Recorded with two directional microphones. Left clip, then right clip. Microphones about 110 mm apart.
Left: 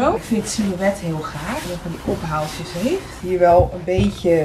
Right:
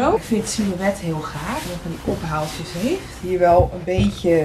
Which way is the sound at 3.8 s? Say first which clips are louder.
Left 1 dB; 5° right (ahead or behind).